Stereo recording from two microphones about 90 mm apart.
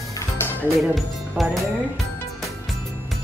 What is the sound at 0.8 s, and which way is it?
Speech, centre (ahead or behind).